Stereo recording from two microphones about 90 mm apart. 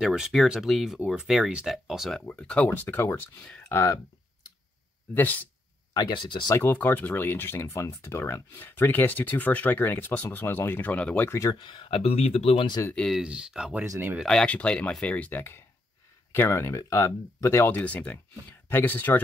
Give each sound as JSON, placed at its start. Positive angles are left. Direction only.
{"t": 0.0, "sound": "speech", "side_deg": -5}
{"t": 2.1, "sound": "speech", "side_deg": 10}
{"t": 5.1, "sound": "speech", "side_deg": 20}
{"t": 5.9, "sound": "speech", "side_deg": 55}
{"t": 6.6, "sound": "speech", "side_deg": 20}
{"t": 11.2, "sound": "speech", "side_deg": 35}
{"t": 11.5, "sound": "speech", "side_deg": 65}
{"t": 12.9, "sound": "speech", "side_deg": 5}
{"t": 13.2, "sound": "speech", "side_deg": -10}
{"t": 13.8, "sound": "speech", "side_deg": -30}
{"t": 14.2, "sound": "speech", "side_deg": 10}
{"t": 17.7, "sound": "speech", "side_deg": 15}